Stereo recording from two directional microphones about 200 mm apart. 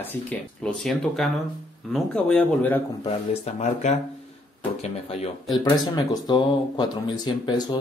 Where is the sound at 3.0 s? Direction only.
30° left (ahead or behind).